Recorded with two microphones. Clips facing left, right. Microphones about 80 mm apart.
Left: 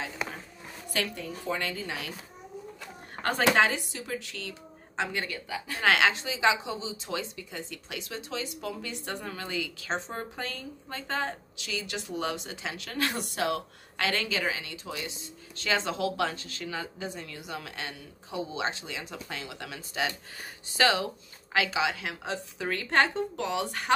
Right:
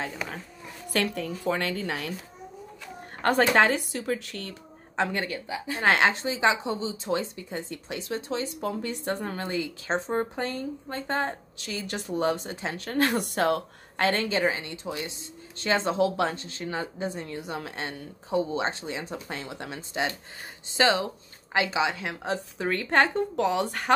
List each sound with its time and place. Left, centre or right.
0.8 s a woman's voice: right
3.2 s speech: right
5.5 s speech: right
5.9 s speech: right